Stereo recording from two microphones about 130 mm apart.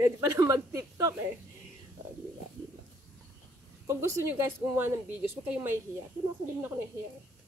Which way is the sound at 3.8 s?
20° right (ahead or behind).